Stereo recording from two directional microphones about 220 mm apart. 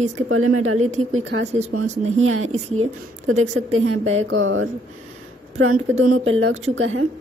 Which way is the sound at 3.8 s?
65° right (ahead or behind).